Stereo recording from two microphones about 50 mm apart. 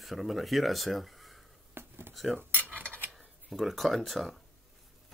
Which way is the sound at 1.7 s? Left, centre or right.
Right.